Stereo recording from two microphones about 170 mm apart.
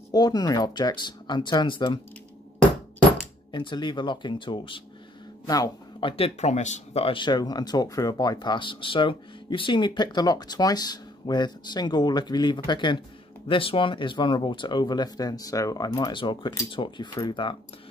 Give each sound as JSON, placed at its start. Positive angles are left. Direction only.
{"t": 0.1, "sound": "speech", "side_deg": 25}
{"t": 3.5, "sound": "speech", "side_deg": 30}